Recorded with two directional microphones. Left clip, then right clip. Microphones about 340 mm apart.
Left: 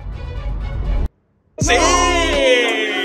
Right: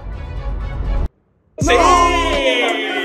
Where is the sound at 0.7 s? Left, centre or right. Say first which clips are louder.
Right 1 dB; centre.